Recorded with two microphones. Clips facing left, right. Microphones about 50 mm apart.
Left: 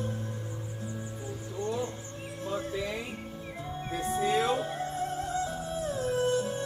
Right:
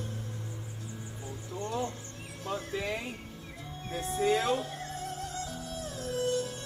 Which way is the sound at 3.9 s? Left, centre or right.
Left.